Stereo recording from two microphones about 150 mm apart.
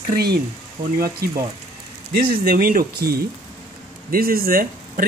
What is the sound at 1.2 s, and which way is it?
Speech, 90° right.